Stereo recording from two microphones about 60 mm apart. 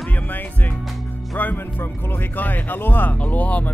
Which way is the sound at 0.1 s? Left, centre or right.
Left.